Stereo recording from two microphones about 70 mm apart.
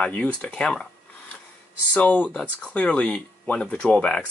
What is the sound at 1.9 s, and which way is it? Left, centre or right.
Speech, left.